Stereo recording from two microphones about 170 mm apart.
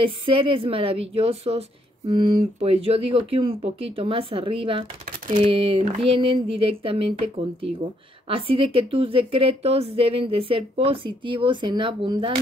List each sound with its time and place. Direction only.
0.0 s a woman's voice: 30° right (ahead or behind)